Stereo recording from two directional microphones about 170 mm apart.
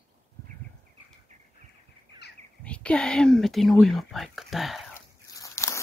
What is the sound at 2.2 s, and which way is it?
Bird, 75° left (ahead or behind).